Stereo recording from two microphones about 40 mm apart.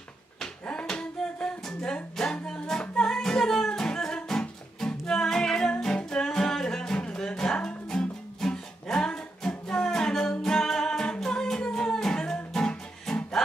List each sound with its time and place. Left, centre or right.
0.7 s music: left